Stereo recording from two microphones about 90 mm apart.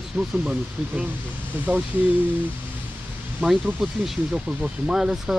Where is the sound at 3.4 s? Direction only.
5° right (ahead or behind).